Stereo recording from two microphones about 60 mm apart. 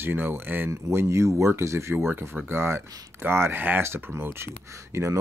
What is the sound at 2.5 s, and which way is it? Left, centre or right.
Speech, right.